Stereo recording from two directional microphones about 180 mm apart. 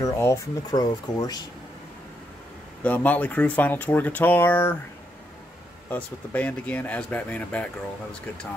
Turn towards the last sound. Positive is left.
turn(degrees=5)  # may be behind; listen again after turning